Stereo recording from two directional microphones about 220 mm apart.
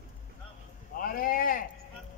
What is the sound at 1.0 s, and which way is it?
Speech, 40° left (ahead or behind).